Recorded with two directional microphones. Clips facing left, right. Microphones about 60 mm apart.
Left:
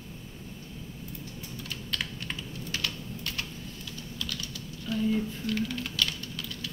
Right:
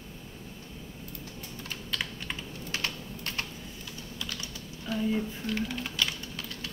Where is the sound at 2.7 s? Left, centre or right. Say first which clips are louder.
Even; right; by 6.1 s centre.